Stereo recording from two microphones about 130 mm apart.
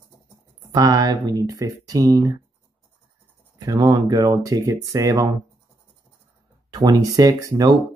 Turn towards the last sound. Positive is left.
turn(degrees=-30)  # may be behind; listen again after turning